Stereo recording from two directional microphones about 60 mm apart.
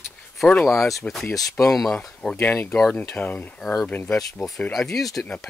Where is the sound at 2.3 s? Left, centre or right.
Left.